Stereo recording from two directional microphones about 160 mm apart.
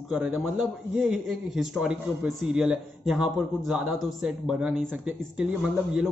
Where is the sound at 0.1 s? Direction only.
5° right (ahead or behind).